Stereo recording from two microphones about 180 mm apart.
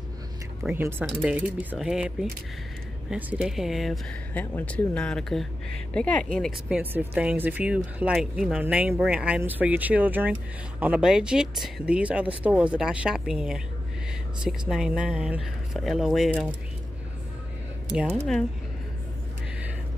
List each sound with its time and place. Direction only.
0.7 s speech: 10° right (ahead or behind)
6.4 s speech: 5° right (ahead or behind)
14.7 s speech: 5° right (ahead or behind)
17.9 s speech: 15° right (ahead or behind)